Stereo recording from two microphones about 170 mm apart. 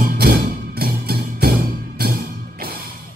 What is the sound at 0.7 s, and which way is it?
Music, 65° right (ahead or behind).